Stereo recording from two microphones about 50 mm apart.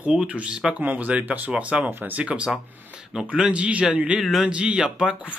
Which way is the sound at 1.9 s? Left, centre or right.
Right.